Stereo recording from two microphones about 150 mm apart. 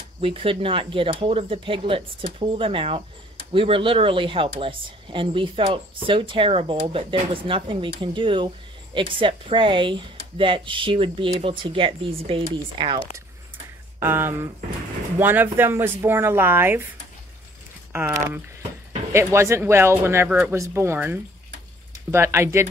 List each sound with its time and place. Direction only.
0.2 s speech: 35° right (ahead or behind)
13.9 s speech: 15° right (ahead or behind)
19.1 s speech: 15° right (ahead or behind)